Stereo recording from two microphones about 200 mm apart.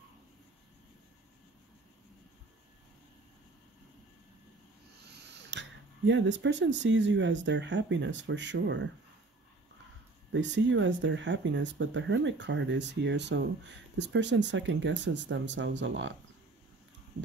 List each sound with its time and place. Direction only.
5.1 s speech: 60° right (ahead or behind)
10.3 s speech: 65° right (ahead or behind)